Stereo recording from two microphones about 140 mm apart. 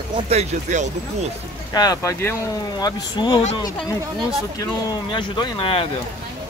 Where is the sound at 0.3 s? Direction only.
55° right (ahead or behind).